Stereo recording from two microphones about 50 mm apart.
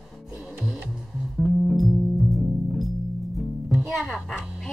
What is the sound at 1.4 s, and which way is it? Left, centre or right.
Music, centre.